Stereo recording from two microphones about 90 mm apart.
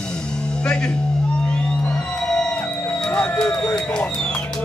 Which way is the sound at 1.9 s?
5° left (ahead or behind).